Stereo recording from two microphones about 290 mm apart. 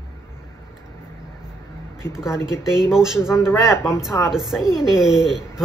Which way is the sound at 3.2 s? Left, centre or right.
Centre.